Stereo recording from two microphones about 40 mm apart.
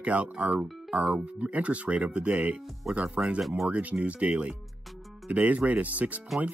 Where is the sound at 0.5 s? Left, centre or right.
Centre.